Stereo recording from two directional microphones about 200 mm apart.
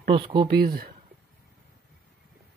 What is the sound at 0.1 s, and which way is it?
Speech, 25° right (ahead or behind).